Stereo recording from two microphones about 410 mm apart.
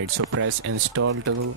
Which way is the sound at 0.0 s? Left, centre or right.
Right.